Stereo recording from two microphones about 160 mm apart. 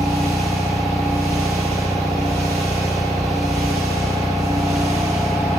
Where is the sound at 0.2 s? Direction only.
Centre (ahead or behind).